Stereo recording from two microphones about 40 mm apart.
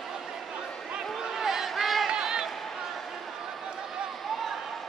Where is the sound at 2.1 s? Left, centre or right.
Centre.